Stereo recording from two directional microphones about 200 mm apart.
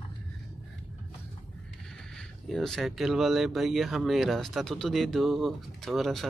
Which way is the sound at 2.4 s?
Centre (ahead or behind).